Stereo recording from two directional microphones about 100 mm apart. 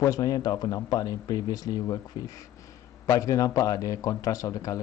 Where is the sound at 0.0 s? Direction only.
35° left (ahead or behind).